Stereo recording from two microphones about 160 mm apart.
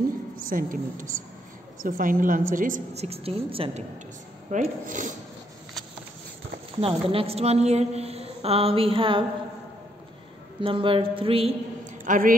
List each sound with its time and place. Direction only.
0.5 s a woman's voice: 60° right (ahead or behind); by 3.8 s 35° right (ahead or behind)
4.5 s speech: 55° right (ahead or behind)
6.8 s a woman's voice: 35° right (ahead or behind)
10.6 s a woman's voice: 35° right (ahead or behind)
11.8 s a sound: 55° right (ahead or behind)